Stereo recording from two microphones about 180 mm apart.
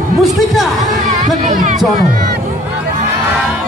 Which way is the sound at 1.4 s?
40° right (ahead or behind).